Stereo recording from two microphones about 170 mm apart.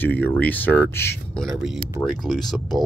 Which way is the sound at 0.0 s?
10° left (ahead or behind).